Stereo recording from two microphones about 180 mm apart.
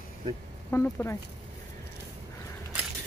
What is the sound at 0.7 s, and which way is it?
Speech, 10° left (ahead or behind).